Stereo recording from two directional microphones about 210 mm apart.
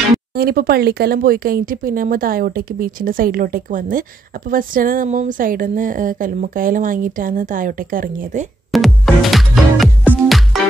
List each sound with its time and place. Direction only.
0.3 s speech: 45° right (ahead or behind)
8.7 s music: centre (ahead or behind)